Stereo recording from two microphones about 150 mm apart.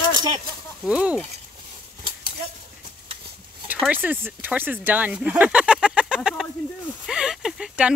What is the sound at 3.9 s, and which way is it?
Speech, 10° right (ahead or behind).